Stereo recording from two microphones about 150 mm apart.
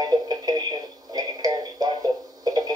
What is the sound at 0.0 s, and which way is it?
Radio, 25° right (ahead or behind).